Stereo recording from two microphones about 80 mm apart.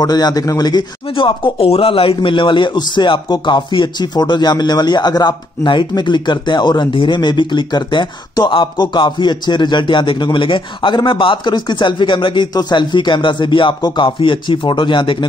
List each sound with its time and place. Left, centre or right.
0.0 s a man's voice: left